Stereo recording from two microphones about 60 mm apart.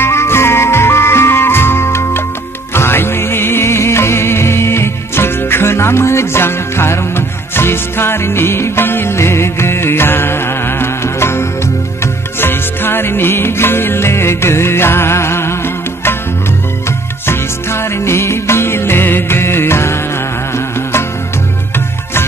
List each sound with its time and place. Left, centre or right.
0.0 s music: left
17.3 s music: left